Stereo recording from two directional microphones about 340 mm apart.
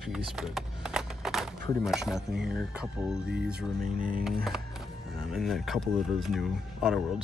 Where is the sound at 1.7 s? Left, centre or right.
Centre.